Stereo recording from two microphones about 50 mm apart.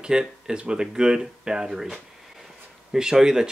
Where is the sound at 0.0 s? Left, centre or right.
Centre.